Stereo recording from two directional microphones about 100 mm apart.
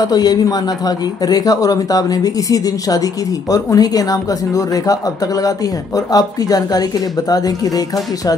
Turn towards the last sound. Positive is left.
turn(degrees=40)  # may be behind; listen again after turning